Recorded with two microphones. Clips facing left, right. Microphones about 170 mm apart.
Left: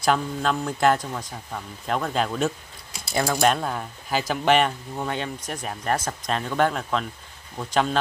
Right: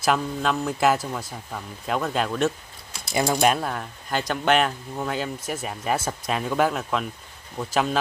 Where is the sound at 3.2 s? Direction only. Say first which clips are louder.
Right 1 dB; 10° right (ahead or behind).